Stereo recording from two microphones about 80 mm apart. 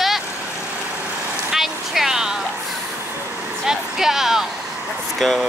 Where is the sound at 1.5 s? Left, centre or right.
Centre.